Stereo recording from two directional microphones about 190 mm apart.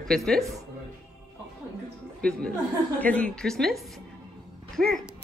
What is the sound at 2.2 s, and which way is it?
Speech, 5° left (ahead or behind).